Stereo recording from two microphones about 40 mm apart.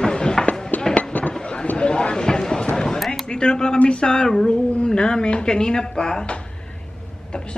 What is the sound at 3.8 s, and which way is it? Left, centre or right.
Speech, left.